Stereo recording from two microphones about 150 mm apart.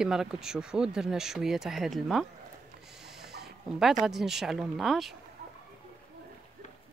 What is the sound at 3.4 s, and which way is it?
Dog, 5° right (ahead or behind).